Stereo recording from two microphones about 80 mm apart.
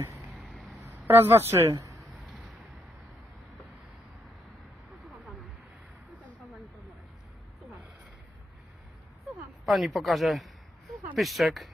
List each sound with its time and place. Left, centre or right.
0.3 s vehicle: centre
0.9 s speech: right
2.0 s a sound: centre
9.7 s speech: centre